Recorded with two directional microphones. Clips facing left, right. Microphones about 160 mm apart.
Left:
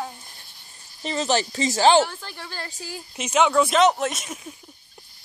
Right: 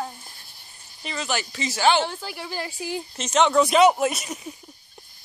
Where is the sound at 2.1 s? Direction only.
10° right (ahead or behind).